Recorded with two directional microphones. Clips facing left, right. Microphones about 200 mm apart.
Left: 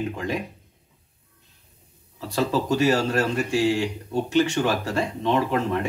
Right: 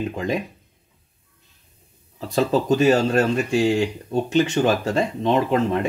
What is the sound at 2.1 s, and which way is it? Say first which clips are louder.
Speech: right 4 dB; 20° right (ahead or behind).